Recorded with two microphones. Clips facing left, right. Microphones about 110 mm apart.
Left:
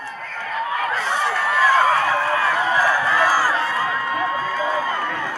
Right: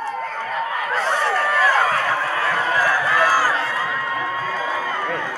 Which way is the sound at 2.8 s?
10° left (ahead or behind).